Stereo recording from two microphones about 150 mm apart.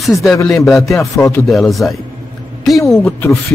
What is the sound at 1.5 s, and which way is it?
Speech, centre (ahead or behind).